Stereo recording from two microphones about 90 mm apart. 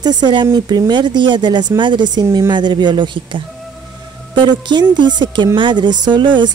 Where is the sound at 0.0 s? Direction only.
55° right (ahead or behind).